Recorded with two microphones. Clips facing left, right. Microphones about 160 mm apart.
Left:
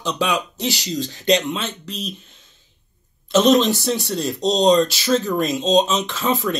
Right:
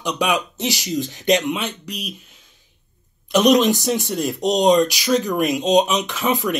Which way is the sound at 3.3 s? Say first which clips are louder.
Even; 15° right (ahead or behind).